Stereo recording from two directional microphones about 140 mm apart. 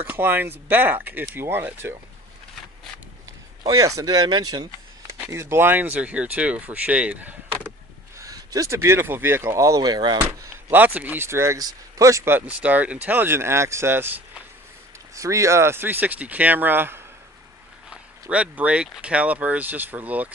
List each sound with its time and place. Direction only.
0.0 s speech: 15° right (ahead or behind)
3.6 s speech: 25° right (ahead or behind)
8.2 s speech: 25° right (ahead or behind)
10.7 s speech: 15° right (ahead or behind)
18.3 s speech: 10° right (ahead or behind)